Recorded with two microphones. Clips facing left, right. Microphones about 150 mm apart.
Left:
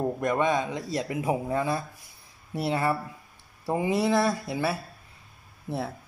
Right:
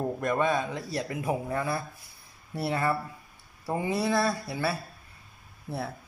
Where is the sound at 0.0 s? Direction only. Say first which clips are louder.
Left 2 dB; 15° left (ahead or behind).